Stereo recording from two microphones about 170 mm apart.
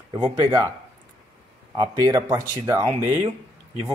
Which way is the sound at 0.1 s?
25° right (ahead or behind).